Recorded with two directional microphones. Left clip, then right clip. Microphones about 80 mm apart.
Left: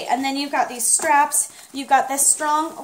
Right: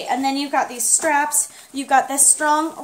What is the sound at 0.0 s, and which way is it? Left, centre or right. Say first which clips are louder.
A woman's voice: right 1 dB; right.